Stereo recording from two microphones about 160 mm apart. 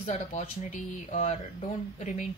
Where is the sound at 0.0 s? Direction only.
40° left (ahead or behind).